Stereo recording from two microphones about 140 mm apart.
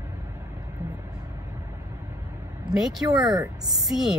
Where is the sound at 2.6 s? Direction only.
5° right (ahead or behind).